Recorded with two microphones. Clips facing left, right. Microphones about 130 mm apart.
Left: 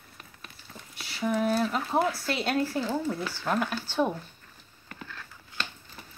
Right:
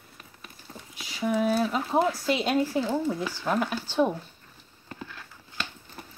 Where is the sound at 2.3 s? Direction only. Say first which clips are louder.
Right 5 dB; 5° right (ahead or behind).